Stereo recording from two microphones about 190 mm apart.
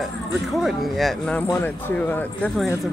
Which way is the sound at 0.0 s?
Centre (ahead or behind).